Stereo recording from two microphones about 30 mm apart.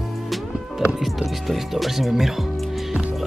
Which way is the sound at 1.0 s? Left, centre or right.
Centre.